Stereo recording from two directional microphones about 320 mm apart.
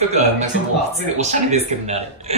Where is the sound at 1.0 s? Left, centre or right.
Right.